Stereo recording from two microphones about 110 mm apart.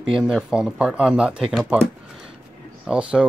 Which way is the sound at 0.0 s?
5° right (ahead or behind).